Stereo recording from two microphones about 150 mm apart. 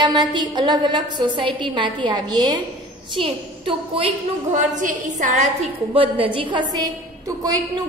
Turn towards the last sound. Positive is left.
turn(degrees=-25)  # may be behind; listen again after turning